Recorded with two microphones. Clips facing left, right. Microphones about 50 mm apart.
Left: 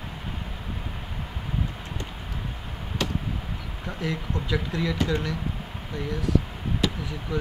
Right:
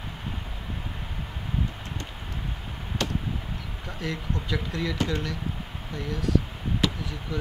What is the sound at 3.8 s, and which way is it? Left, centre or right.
Speech, centre.